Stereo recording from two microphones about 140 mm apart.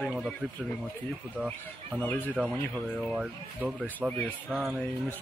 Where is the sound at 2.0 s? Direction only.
10° left (ahead or behind).